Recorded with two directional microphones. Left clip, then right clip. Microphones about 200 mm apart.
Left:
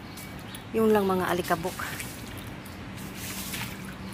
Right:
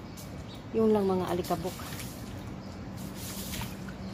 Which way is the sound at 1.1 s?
15° left (ahead or behind).